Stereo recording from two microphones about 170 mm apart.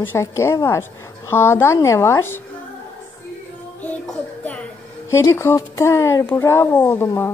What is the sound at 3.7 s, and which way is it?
Music, 10° left (ahead or behind).